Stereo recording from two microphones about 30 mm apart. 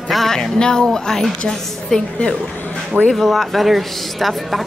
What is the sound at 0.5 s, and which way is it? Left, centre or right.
Speech, left.